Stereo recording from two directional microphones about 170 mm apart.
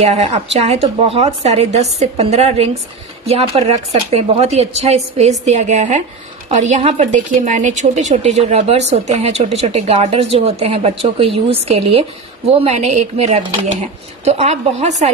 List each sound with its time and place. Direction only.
0.0 s a woman's voice: 40° right (ahead or behind)